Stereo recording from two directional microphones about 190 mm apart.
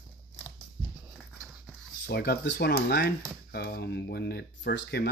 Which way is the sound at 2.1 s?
60° left (ahead or behind).